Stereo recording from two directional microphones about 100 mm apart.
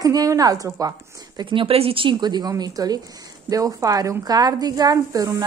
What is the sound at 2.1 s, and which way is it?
A woman's voice, 45° right (ahead or behind).